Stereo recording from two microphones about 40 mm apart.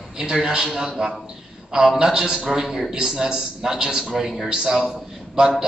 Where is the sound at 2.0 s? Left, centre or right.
Centre.